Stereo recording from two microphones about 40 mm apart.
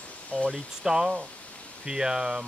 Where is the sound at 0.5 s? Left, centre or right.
Right.